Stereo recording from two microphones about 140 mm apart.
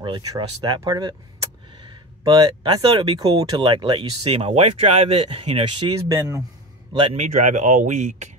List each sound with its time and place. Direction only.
0.0 s speech: 35° right (ahead or behind)
6.0 s speech: 20° right (ahead or behind)
7.0 s speech: 50° right (ahead or behind)